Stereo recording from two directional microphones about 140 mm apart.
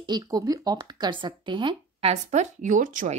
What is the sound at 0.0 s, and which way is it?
Speech, 30° right (ahead or behind).